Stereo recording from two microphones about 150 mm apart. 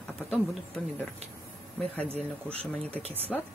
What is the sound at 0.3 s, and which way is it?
Speech, 5° left (ahead or behind).